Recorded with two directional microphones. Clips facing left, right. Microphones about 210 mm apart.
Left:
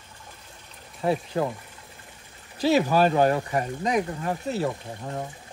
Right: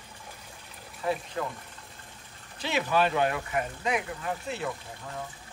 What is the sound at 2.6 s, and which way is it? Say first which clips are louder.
Speech: left 7 dB; 40° left (ahead or behind).